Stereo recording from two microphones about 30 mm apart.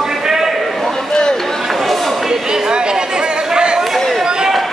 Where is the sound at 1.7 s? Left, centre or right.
Centre.